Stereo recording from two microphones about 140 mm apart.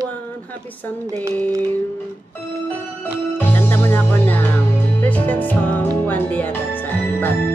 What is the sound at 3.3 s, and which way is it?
Music, 15° left (ahead or behind).